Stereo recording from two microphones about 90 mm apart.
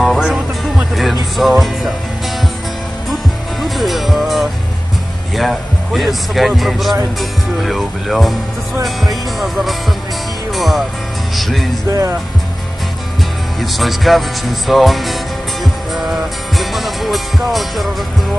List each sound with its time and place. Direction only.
0.0 s music: centre (ahead or behind)
1.3 s a man's voice: centre (ahead or behind)
3.6 s music: centre (ahead or behind)
5.3 s a man's voice: centre (ahead or behind)
9.4 s a man's voice: centre (ahead or behind)
11.9 s speech: 35° right (ahead or behind)
13.6 s a man's voice: centre (ahead or behind)
15.6 s music: centre (ahead or behind)